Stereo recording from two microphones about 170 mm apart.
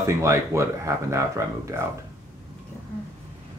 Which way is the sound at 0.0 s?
15° right (ahead or behind).